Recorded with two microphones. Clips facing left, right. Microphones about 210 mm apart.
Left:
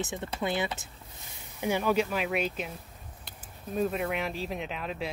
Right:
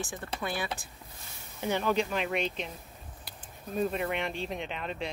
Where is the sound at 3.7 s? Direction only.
Centre (ahead or behind).